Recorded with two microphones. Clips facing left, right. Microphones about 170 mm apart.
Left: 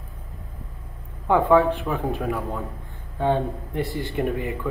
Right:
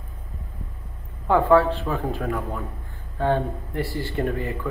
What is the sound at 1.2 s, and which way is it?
Speech, 15° left (ahead or behind).